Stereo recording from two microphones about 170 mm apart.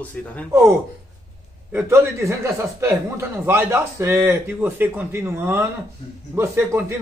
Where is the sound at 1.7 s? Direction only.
15° right (ahead or behind).